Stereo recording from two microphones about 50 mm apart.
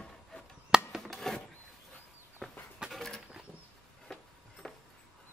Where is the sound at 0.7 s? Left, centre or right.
Centre.